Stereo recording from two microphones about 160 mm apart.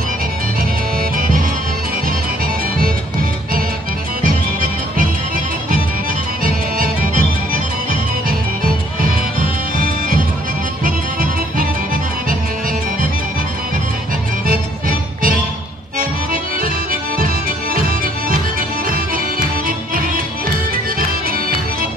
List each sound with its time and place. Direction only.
4.2 s music: 60° right (ahead or behind)
6.4 s music: 60° right (ahead or behind)
9.8 s music: 60° right (ahead or behind)
14.5 s music: 60° right (ahead or behind)
16.0 s accordion: 60° right (ahead or behind)